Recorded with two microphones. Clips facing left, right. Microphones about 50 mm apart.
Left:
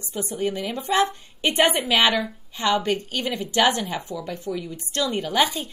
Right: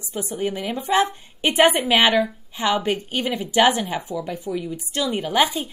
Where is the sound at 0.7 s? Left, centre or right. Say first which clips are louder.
Right 3 dB; right.